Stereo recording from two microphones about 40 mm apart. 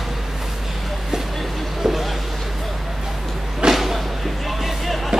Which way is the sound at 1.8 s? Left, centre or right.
Centre.